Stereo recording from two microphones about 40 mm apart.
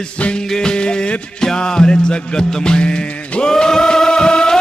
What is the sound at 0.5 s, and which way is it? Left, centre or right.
Music, centre.